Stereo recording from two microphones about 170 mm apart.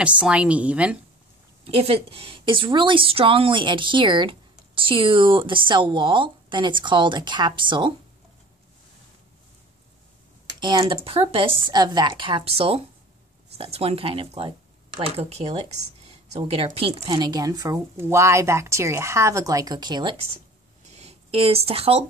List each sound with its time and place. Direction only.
0.0 s a woman's voice: 5° right (ahead or behind)
1.6 s a woman's voice: 35° right (ahead or behind)
10.6 s a woman's voice: 30° right (ahead or behind)
20.8 s a sound: 40° right (ahead or behind)